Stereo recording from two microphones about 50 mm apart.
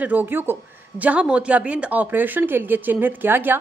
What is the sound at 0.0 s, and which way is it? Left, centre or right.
Speech, right.